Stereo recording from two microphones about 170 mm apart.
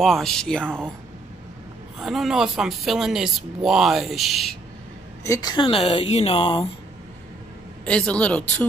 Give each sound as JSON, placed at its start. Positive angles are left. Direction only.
{"t": 0.0, "sound": "speech", "side_deg": 0}
{"t": 2.0, "sound": "speech", "side_deg": 0}
{"t": 5.2, "sound": "a woman's voice", "side_deg": 20}
{"t": 7.8, "sound": "speech", "side_deg": 5}